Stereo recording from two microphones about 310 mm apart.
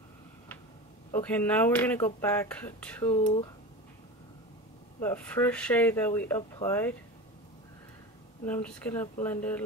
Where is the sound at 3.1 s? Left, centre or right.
Centre.